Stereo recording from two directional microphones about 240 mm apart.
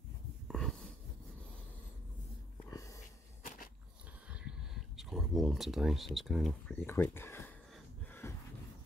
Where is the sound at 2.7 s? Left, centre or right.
Centre.